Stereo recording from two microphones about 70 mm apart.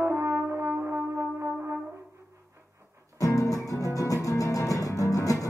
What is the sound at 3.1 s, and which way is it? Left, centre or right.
Music, left.